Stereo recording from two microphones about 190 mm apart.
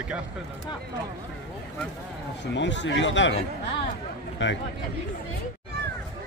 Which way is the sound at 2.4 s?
70° left (ahead or behind).